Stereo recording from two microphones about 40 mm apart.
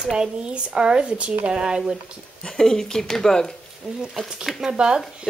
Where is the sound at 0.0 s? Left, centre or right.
Centre.